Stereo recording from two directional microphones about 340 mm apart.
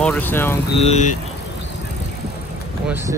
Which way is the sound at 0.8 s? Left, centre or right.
Centre.